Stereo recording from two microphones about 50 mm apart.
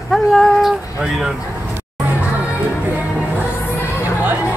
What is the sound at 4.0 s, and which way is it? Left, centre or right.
Music, right.